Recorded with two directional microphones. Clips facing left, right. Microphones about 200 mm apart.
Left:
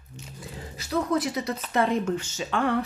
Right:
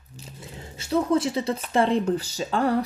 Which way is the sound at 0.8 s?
30° right (ahead or behind).